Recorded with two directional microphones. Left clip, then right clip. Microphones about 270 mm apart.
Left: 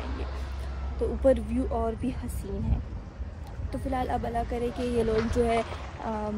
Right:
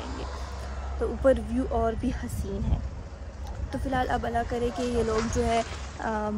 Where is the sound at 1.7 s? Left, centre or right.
Right.